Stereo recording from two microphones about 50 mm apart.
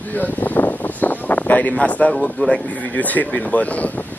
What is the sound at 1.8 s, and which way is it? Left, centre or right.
Speech, left.